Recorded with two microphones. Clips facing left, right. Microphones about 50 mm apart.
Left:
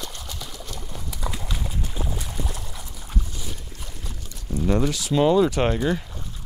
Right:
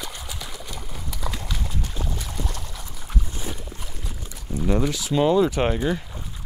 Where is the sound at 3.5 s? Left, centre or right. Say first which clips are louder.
Right 3 dB; centre.